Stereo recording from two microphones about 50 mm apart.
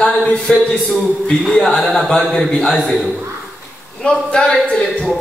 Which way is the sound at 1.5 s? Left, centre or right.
Centre.